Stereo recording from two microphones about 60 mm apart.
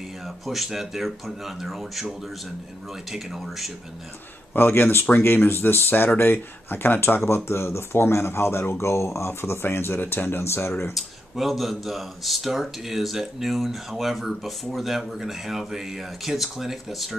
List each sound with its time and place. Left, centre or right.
0.5 s speech: centre
3.1 s speech: centre
4.6 s speech: left
11.0 s speech: centre